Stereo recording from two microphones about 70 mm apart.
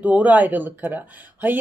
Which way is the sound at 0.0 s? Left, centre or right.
Right.